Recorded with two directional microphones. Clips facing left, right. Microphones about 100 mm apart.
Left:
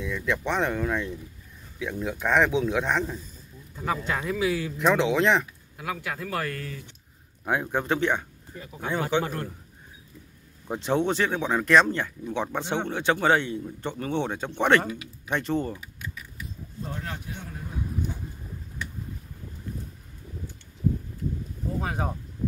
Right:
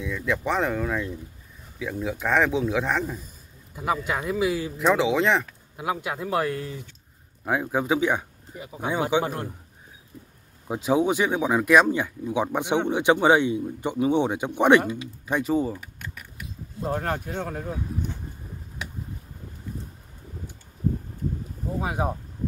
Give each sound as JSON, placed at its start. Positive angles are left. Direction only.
{"t": 0.0, "sound": "speech", "side_deg": 0}
{"t": 4.7, "sound": "speech", "side_deg": 0}
{"t": 5.8, "sound": "speech", "side_deg": -20}
{"t": 7.4, "sound": "speech", "side_deg": -5}
{"t": 10.7, "sound": "speech", "side_deg": -5}
{"t": 16.8, "sound": "speech", "side_deg": -50}
{"t": 21.7, "sound": "speech", "side_deg": -15}